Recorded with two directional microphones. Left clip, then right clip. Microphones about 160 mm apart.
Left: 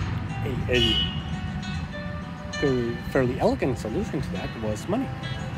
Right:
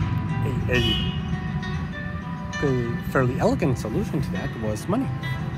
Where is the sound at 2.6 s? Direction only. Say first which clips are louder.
Left 1 dB; 15° left (ahead or behind).